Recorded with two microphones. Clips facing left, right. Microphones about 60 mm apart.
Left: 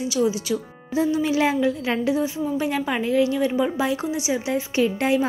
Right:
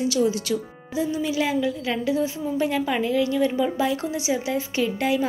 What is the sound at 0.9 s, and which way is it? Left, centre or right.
A woman's voice, left.